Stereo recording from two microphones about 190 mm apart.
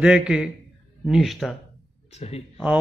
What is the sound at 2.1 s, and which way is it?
Speech, 35° left (ahead or behind).